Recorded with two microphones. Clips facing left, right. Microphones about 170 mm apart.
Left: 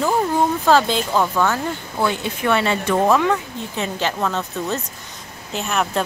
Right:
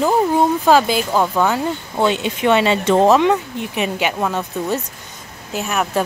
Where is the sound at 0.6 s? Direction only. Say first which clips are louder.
Right 2 dB; 15° right (ahead or behind).